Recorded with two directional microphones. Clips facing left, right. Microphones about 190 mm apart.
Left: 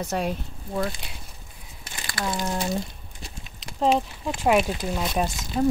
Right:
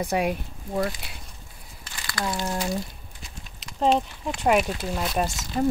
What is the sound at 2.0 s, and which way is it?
Crumpling, 25° left (ahead or behind).